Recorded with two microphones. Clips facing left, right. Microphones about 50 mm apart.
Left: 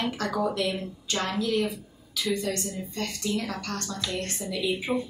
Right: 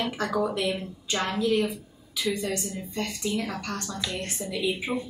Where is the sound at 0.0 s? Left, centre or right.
Centre.